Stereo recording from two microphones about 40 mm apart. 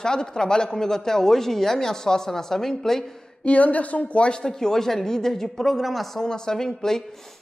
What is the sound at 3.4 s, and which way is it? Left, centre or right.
Speech, left.